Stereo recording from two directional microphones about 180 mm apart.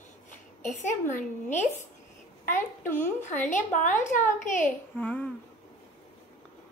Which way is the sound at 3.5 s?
45° left (ahead or behind).